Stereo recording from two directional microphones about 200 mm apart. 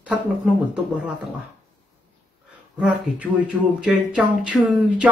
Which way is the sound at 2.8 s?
5° right (ahead or behind).